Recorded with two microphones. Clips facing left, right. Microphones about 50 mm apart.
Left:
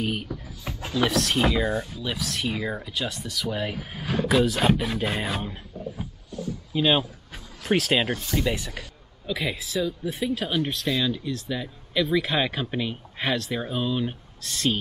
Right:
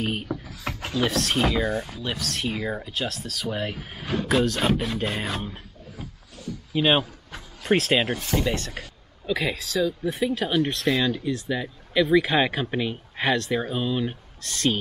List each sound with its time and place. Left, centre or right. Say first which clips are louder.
0.0 s speech: even; centre
0.5 s a sound: right 3 dB; right
0.9 s speech: left 1 dB; centre
6.7 s speech: right 1 dB; right
7.0 s speech: right 1 dB; centre
10.9 s speech: right 2 dB; right
11.2 s speech: right 3 dB; centre